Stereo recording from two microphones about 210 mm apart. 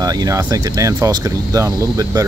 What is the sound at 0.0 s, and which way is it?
Speech, 15° right (ahead or behind).